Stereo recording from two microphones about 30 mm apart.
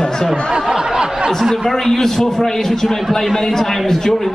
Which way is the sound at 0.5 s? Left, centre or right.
Right.